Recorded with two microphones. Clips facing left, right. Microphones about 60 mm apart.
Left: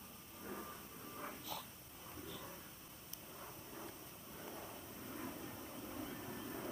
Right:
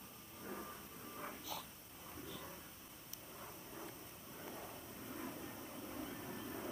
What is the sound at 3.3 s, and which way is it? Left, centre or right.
Vehicle, centre.